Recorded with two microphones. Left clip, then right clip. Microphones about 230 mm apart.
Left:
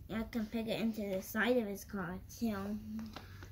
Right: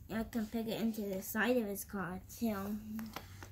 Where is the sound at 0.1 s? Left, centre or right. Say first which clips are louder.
Even; centre.